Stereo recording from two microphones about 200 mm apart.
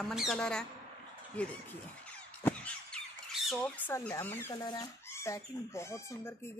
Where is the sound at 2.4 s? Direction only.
5° left (ahead or behind).